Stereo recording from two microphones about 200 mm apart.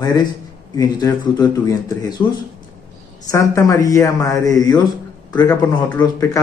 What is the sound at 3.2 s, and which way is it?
A man's voice, 15° left (ahead or behind).